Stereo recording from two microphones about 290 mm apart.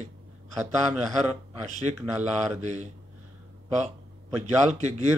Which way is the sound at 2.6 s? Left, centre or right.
Right.